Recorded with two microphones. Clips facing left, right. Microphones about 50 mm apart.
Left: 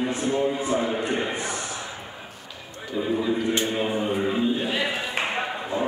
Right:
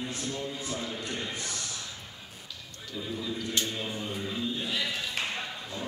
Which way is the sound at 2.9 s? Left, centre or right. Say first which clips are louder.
Left 11 dB; left.